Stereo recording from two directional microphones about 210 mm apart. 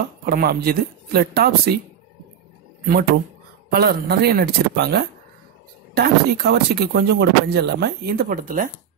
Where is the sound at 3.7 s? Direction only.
50° right (ahead or behind).